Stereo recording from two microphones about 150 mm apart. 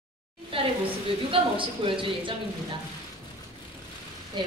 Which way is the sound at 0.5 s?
40° right (ahead or behind).